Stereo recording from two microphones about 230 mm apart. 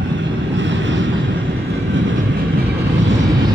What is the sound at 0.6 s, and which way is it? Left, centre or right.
Vehicle, right.